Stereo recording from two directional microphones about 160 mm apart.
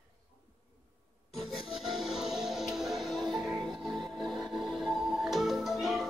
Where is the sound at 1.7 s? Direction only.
Centre (ahead or behind).